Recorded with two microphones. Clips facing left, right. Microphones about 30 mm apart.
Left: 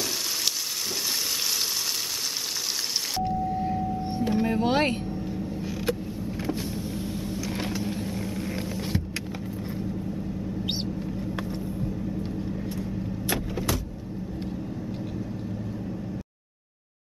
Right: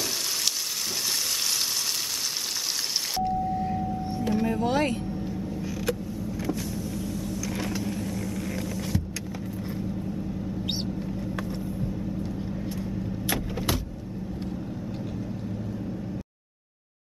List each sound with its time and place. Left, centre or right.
3.2 s vehicle: centre
4.2 s power windows: centre
5.5 s creak: centre
6.1 s vehicle: left
9.6 s vehicle: centre
13.3 s vehicle: centre